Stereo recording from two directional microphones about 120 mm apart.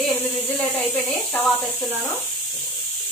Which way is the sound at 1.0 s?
15° left (ahead or behind).